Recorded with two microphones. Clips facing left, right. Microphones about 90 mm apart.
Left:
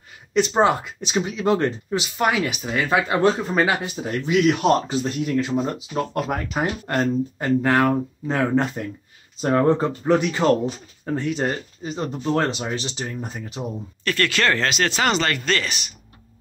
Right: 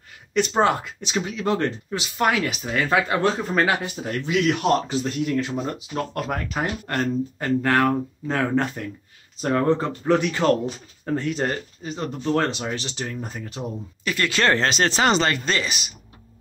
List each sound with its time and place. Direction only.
0.3 s speech: 20° left (ahead or behind)
11.9 s speech: 20° left (ahead or behind)
14.0 s speech: 15° right (ahead or behind)